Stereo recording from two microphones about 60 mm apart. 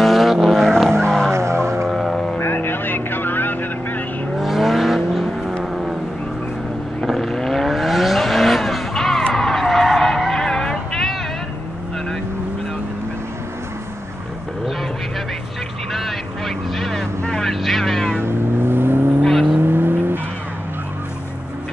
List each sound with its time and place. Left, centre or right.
0.0 s vehicle: centre
1.3 s music: right
1.9 s music: centre
2.4 s vehicle: left
4.4 s vehicle: centre
7.0 s vehicle: centre
15.9 s vehicle: centre
18.2 s vehicle: right
19.2 s vehicle: centre
19.6 s vehicle: right